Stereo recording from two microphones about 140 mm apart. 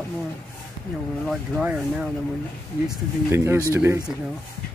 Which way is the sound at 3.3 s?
15° right (ahead or behind).